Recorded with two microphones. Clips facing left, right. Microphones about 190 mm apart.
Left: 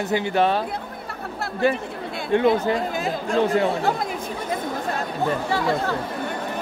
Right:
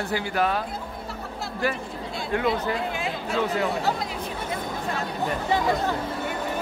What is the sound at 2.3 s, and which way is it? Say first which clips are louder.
Speech: left 6 dB; 25° left (ahead or behind).